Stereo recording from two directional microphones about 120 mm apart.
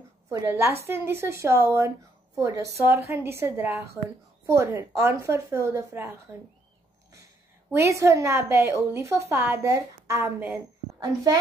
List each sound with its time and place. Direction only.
0.5 s a woman's voice: 20° right (ahead or behind)
7.7 s a woman's voice: 25° right (ahead or behind)